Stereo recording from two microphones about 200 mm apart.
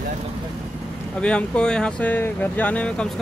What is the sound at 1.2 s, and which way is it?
Speech, 5° left (ahead or behind).